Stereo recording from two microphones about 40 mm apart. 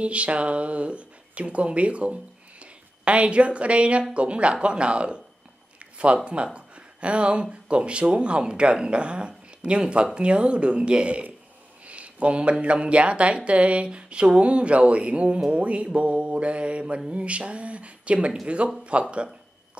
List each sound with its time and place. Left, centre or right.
0.0 s speech: right
5.8 s a sound: right
6.2 s speech: right